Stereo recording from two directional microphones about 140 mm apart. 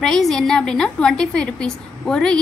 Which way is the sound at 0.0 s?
5° left (ahead or behind).